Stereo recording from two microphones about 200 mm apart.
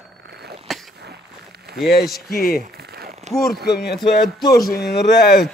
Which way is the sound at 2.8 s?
55° right (ahead or behind).